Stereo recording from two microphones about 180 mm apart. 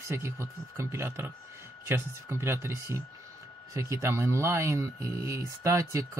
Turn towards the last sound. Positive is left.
turn(degrees=-15)  # may be behind; listen again after turning